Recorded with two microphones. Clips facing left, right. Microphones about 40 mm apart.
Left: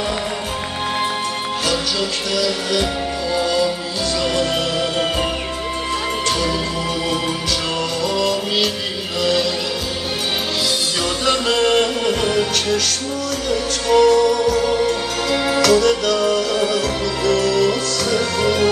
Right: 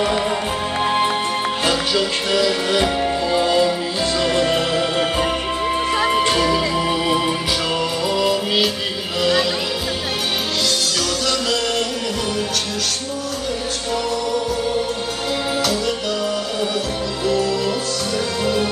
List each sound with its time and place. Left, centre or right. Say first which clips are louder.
1.7 s music: right 1 dB; right
6.0 s music: right 3 dB; right
8.1 s music: right 2 dB; centre
11.2 s music: left 7 dB; left
12.4 s music: left 4 dB; left
13.9 s music: left 10 dB; left
15.6 s music: left 6 dB; left